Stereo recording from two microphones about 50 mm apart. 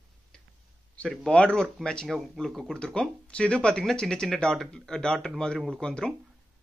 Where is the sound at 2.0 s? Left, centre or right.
Centre.